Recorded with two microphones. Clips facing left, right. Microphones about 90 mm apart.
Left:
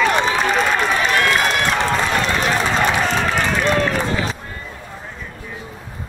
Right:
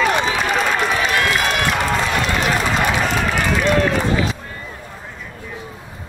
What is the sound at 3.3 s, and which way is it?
Run, 35° left (ahead or behind).